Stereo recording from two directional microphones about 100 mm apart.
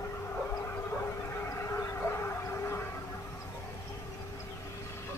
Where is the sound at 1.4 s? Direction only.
30° left (ahead or behind).